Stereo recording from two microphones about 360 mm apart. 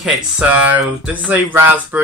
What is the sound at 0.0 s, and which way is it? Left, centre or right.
Speech, centre.